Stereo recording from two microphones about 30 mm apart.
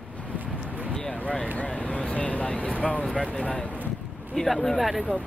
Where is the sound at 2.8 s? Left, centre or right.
Left.